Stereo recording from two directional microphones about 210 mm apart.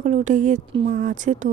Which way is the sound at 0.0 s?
35° right (ahead or behind).